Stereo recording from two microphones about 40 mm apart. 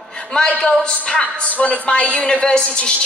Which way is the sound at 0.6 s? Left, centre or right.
Left.